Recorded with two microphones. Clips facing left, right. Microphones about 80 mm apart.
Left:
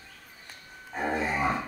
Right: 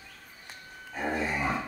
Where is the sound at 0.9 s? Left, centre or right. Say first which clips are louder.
Left 2 dB; centre.